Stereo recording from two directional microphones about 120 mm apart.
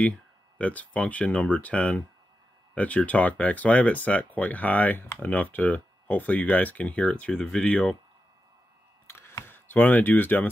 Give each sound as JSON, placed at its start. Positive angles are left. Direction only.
{"t": 0.6, "sound": "speech", "side_deg": 10}
{"t": 9.0, "sound": "camera", "side_deg": 20}